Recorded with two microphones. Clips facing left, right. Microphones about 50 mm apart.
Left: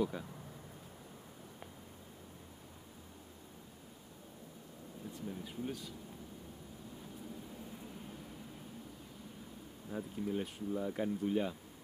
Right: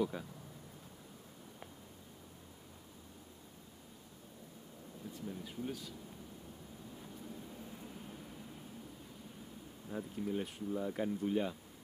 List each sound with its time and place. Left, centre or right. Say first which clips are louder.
0.0 s speech: even; centre
5.1 s speech: left 1 dB; centre
7.0 s vehicle: left 1 dB; centre
9.8 s speech: left 1 dB; centre